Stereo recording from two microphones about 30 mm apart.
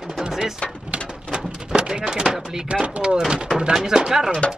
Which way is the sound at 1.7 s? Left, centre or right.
Right.